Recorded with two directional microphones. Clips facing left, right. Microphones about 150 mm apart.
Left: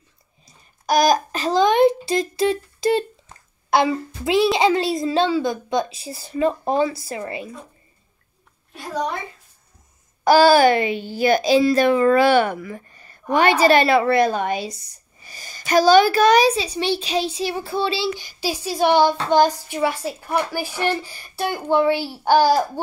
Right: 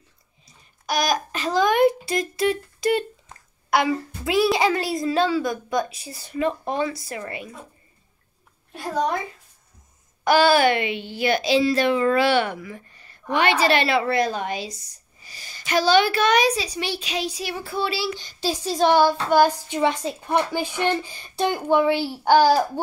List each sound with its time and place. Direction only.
0.8 s a child's voice: 40° left (ahead or behind)
10.2 s a woman's voice: 35° left (ahead or behind); by 14.8 s 55° left (ahead or behind)
15.2 s a child's voice: 45° left (ahead or behind); by 18.1 s 25° left (ahead or behind)
18.1 s speech: 10° left (ahead or behind)
18.9 s a child's voice: 20° left (ahead or behind)
19.9 s a woman's voice: 20° right (ahead or behind)
22.2 s speech: 10° left (ahead or behind)